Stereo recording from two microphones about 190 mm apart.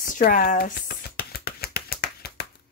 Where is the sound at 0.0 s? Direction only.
45° left (ahead or behind).